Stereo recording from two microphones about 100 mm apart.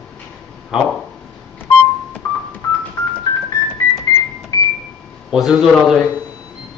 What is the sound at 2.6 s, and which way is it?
Music, 35° left (ahead or behind).